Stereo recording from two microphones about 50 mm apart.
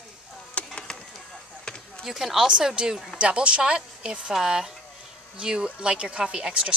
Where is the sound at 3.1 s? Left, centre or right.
Right; by 4.7 s centre.